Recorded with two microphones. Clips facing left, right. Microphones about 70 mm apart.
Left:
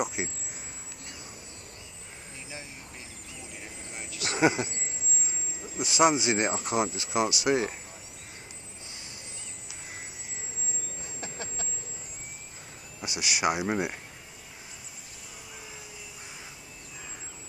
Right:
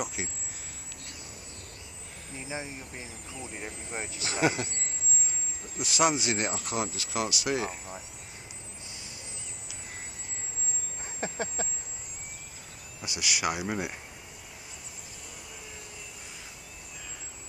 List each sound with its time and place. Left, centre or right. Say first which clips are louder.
0.0 s speech: left 4 dB; left
2.4 s speech: right 8 dB; right
3.5 s speech: right 6 dB; right
4.4 s speech: left 3 dB; centre
5.8 s speech: left 3 dB; left
11.1 s a sound: right 7 dB; right
13.2 s speech: left 3 dB; left
13.6 s speech: left 4 dB; centre